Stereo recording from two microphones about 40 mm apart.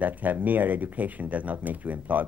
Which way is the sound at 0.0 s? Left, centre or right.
Right.